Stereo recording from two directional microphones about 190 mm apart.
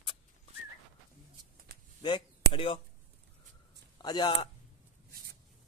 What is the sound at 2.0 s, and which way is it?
Speech, 25° left (ahead or behind).